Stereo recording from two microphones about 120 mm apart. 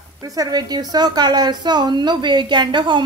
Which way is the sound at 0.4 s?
35° right (ahead or behind).